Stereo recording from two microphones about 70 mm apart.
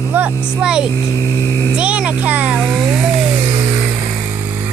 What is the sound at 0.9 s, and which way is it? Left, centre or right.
Speech, left.